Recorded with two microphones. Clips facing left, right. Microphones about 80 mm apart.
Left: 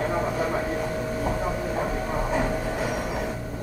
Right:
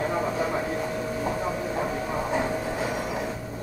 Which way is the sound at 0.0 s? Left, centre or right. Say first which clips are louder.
Left 1 dB; centre.